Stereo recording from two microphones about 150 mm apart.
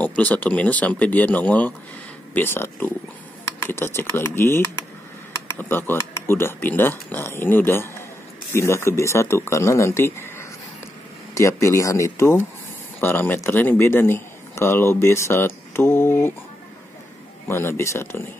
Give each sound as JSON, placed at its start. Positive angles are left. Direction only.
{"t": 0.0, "sound": "speech", "side_deg": 10}
{"t": 17.5, "sound": "speech", "side_deg": 15}